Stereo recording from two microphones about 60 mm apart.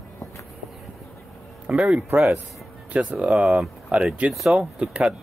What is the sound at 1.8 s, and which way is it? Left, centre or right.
Speech, right.